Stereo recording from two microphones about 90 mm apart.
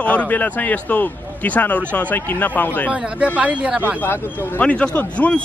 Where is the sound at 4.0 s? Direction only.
20° left (ahead or behind).